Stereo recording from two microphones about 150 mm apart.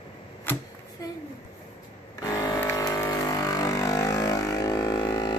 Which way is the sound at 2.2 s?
25° left (ahead or behind).